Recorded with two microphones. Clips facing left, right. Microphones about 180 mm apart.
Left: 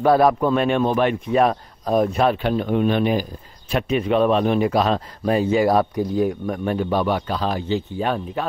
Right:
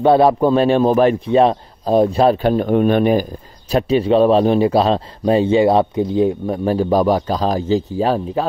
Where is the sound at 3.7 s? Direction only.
30° right (ahead or behind).